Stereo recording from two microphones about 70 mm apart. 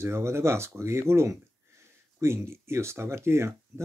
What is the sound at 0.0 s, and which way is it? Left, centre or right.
Speech, right.